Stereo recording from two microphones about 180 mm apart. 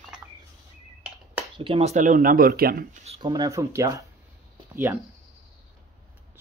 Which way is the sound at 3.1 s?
25° right (ahead or behind).